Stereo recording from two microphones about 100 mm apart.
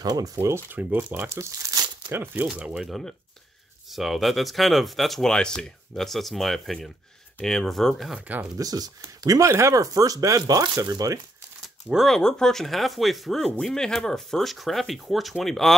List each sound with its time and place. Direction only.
0.0 s speech: 40° right (ahead or behind)
0.7 s speech: 20° right (ahead or behind)
2.0 s speech: 20° right (ahead or behind)
2.5 s speech: 10° right (ahead or behind)
8.5 s speech: 40° right (ahead or behind)
11.6 s speech: centre (ahead or behind)